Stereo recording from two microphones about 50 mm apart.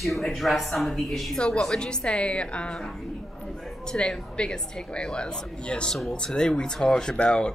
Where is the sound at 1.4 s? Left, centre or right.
Centre.